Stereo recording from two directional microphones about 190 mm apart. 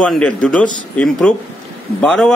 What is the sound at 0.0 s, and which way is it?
Speech, 5° left (ahead or behind).